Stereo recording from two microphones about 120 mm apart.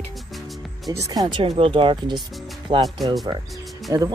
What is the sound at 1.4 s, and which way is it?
Speech, 50° right (ahead or behind).